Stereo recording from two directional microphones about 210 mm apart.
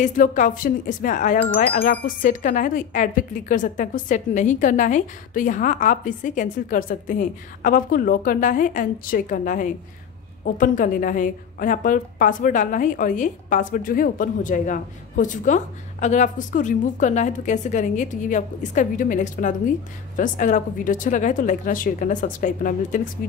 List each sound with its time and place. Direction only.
0.0 s a woman's voice: 35° left (ahead or behind)